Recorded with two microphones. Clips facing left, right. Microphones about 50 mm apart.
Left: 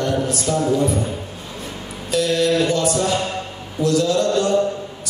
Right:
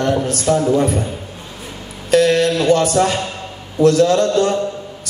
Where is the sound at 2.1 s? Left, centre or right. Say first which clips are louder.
Right 5 dB; right.